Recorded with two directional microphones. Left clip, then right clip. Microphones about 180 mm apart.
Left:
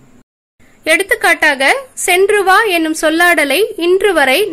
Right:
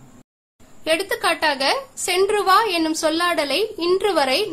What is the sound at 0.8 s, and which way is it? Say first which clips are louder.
A woman's voice: left 9 dB; 25° left (ahead or behind).